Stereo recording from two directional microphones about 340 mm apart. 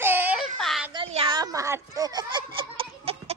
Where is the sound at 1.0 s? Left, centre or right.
Centre.